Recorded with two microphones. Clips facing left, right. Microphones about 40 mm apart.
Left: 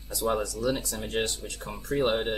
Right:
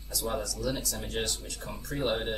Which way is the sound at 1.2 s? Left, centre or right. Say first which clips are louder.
Left 3 dB; centre.